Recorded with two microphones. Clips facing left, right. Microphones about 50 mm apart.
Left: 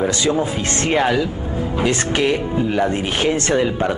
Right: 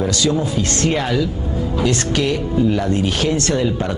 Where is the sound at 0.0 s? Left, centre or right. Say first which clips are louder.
Even; left.